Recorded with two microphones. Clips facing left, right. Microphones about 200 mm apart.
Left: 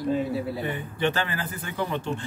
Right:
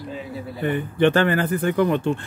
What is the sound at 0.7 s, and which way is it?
Speech, 60° right (ahead or behind).